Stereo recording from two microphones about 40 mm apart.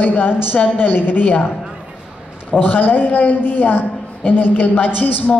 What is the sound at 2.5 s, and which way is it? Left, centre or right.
A man's voice, left.